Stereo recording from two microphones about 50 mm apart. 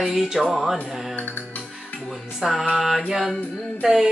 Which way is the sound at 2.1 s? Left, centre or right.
Centre.